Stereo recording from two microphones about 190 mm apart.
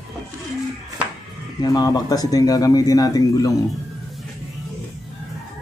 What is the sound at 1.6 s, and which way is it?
Speech, 20° left (ahead or behind).